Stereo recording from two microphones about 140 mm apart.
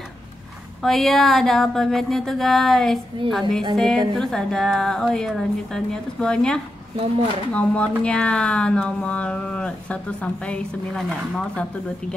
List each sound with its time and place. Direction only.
0.8 s a woman's voice: centre (ahead or behind)